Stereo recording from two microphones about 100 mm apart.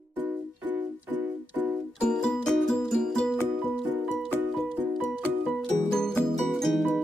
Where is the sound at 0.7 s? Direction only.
15° right (ahead or behind).